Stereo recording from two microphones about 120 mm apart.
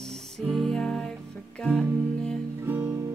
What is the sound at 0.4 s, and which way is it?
Music, centre (ahead or behind).